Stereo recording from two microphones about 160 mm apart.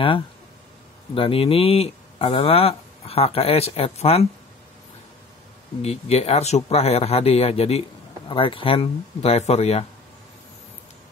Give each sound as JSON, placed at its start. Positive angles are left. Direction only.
{"t": 1.1, "sound": "speech", "side_deg": 35}
{"t": 5.8, "sound": "speech", "side_deg": 40}